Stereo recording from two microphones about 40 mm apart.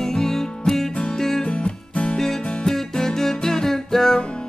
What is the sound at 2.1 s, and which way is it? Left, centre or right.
Music, centre.